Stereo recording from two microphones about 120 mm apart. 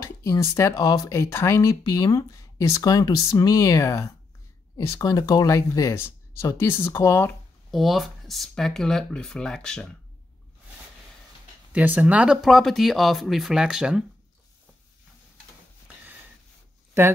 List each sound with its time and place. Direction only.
0.0 s speech: 25° left (ahead or behind)
7.7 s speech: centre (ahead or behind)
11.7 s speech: 15° right (ahead or behind)